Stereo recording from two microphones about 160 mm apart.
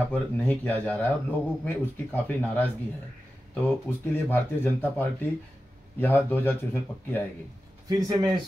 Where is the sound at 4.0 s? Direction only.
15° left (ahead or behind).